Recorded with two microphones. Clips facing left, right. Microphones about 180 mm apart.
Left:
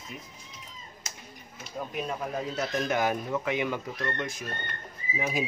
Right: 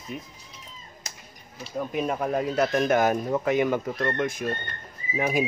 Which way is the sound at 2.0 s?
60° right (ahead or behind).